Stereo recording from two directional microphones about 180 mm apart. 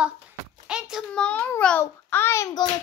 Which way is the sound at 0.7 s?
5° right (ahead or behind).